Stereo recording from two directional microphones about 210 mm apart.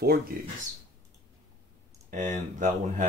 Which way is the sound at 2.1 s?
35° right (ahead or behind).